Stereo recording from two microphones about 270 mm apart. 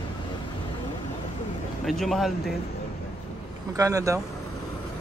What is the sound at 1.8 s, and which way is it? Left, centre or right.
Speech, centre.